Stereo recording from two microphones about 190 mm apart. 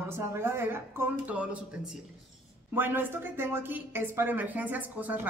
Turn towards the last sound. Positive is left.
turn(degrees=-10)  # may be behind; listen again after turning